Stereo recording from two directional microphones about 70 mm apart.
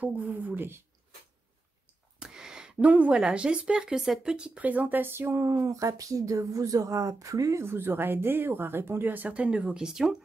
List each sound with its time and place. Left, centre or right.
0.0 s speech: right
2.1 s a sound: centre
3.2 s speech: centre
4.6 s speech: right
7.6 s speech: right; by 10.1 s centre